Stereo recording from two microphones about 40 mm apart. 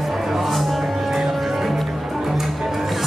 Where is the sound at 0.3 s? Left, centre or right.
Centre.